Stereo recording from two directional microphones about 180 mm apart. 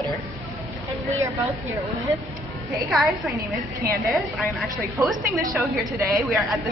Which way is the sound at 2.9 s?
Centre (ahead or behind).